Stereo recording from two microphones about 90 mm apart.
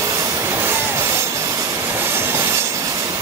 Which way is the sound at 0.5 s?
25° right (ahead or behind).